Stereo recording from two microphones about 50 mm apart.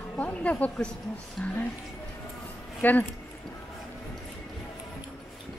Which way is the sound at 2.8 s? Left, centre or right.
Left.